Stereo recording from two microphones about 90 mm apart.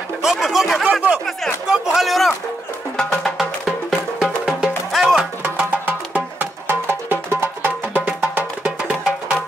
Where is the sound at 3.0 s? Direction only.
Centre (ahead or behind).